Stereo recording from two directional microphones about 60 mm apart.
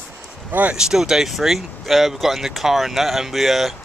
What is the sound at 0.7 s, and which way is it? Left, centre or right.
Speech, centre.